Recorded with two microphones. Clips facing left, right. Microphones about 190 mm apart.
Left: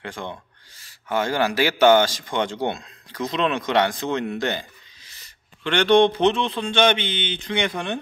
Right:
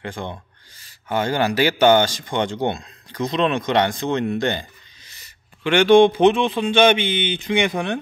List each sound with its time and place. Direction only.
0.2 s speech: 30° right (ahead or behind)
1.1 s speech: centre (ahead or behind)
5.6 s speech: 10° right (ahead or behind)